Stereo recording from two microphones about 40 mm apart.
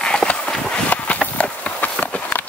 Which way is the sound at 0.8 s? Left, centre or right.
Left.